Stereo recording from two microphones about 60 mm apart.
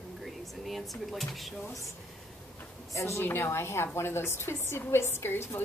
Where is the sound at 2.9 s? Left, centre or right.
Left.